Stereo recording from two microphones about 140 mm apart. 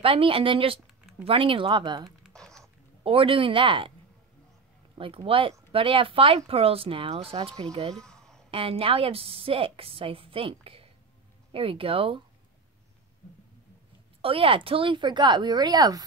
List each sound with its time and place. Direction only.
0.0 s speech: 40° right (ahead or behind)
2.0 s a sound: centre (ahead or behind)
3.0 s speech: 40° right (ahead or behind)
4.9 s speech: 40° right (ahead or behind)
7.9 s a sound: 5° left (ahead or behind)
8.5 s speech: 40° right (ahead or behind)
14.2 s speech: 40° right (ahead or behind)